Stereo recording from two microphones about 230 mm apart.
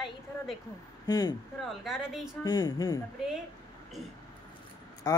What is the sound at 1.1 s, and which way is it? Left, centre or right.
Speech, centre.